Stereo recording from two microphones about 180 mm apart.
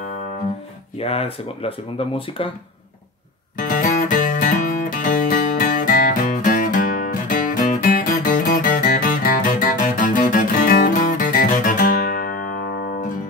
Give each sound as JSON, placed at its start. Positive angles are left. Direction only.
{"t": 0.9, "sound": "speech", "side_deg": 35}
{"t": 3.5, "sound": "music", "side_deg": 45}